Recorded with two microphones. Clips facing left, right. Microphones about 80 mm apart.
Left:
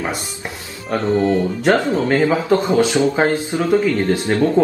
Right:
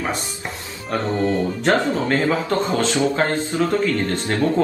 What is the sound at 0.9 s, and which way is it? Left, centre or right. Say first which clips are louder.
A man's voice: left 4 dB; centre.